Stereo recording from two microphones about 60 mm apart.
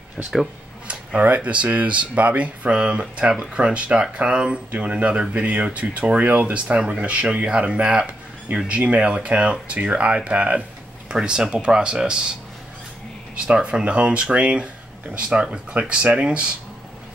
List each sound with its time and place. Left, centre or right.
0.8 s speech: right
13.5 s speech: centre